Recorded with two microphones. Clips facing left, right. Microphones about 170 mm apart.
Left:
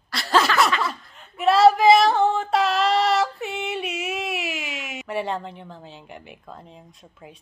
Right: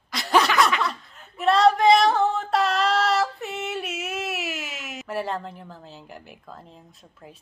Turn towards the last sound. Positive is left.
turn(degrees=0)  # may be behind; listen again after turning